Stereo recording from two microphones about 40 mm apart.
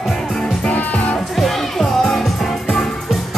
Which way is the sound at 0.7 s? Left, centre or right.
Left.